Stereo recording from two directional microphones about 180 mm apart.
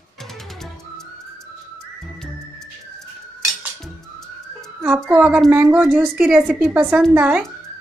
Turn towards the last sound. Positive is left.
turn(degrees=-10)  # may be behind; listen again after turning